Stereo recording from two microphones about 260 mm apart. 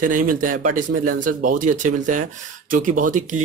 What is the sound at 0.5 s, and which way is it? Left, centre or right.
Speech, right.